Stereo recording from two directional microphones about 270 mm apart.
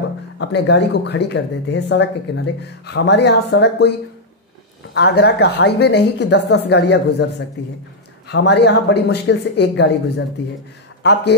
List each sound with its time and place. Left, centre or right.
0.4 s speech: left
4.9 s speech: left